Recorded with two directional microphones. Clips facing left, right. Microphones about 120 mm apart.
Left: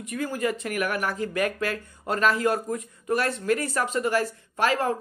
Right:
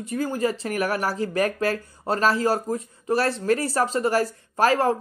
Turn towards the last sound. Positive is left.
turn(degrees=-35)  # may be behind; listen again after turning